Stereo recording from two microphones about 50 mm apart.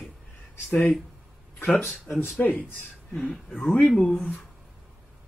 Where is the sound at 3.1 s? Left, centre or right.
Centre.